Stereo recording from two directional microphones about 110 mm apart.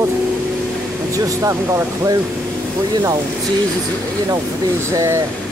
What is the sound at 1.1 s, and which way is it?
Speech, 30° right (ahead or behind).